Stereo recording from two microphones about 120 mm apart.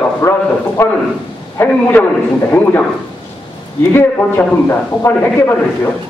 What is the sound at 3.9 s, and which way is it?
A man's voice, 20° left (ahead or behind).